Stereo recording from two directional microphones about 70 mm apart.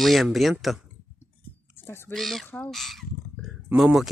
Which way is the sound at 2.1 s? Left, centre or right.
Centre.